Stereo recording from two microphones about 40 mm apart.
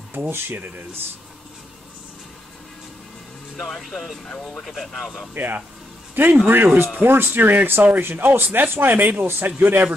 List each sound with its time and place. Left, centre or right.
0.1 s speech: right
3.5 s speech: centre
5.3 s speech: right
8.0 s speech: right
8.5 s speech: right